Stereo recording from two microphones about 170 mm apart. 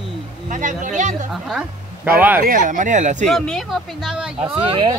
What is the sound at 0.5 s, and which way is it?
Speech, 50° right (ahead or behind).